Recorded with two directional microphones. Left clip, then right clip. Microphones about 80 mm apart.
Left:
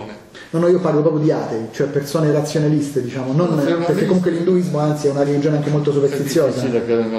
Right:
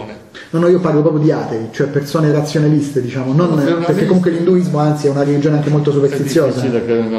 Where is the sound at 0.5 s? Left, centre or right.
Right.